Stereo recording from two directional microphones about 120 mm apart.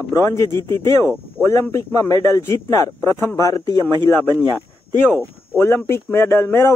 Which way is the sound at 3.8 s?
15° left (ahead or behind).